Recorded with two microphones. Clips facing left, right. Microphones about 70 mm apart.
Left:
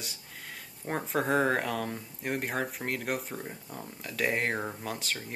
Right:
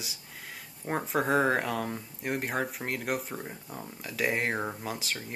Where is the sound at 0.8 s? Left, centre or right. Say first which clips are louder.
Right 1 dB; centre.